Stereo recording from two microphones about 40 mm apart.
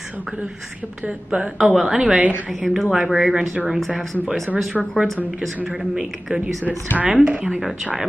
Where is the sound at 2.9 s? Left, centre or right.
Centre.